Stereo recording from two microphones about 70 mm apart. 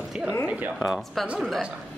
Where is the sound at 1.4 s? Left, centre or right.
Centre.